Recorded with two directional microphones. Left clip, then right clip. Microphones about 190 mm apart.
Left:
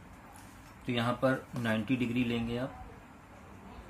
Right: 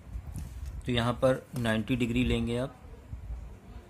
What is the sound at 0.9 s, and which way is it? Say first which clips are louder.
Speech: right 3 dB; 40° right (ahead or behind).